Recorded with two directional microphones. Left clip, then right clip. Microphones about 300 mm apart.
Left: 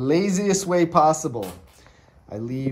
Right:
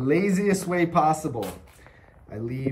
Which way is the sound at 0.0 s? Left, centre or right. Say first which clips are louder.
Left 1 dB; centre.